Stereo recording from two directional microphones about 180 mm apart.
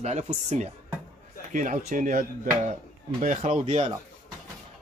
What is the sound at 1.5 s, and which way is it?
Speech, 45° right (ahead or behind).